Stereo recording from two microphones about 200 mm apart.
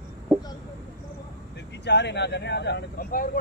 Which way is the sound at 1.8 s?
60° left (ahead or behind).